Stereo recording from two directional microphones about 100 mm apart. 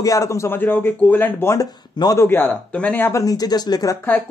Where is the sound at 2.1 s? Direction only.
20° left (ahead or behind); by 4.0 s 40° left (ahead or behind).